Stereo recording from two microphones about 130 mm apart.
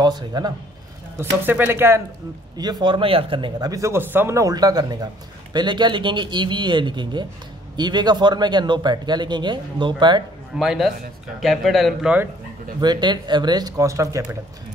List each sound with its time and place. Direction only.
0.0 s speech: 30° right (ahead or behind)
1.4 s speech: 15° right (ahead or behind)
2.5 s a man's voice: 30° right (ahead or behind)
10.5 s speech: 5° right (ahead or behind)
12.8 s a man's voice: 35° right (ahead or behind)